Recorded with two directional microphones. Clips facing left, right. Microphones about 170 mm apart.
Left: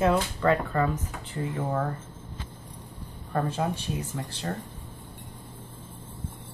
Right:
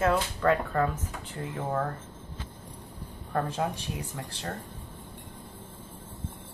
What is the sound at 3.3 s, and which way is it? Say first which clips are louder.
Speech: left 2 dB; centre (ahead or behind).